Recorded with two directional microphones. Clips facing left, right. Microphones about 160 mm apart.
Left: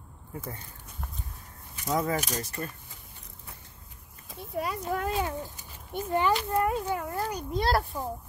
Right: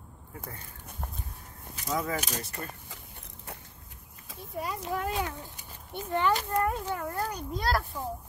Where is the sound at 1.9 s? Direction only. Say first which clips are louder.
Left 3 dB; 35° left (ahead or behind).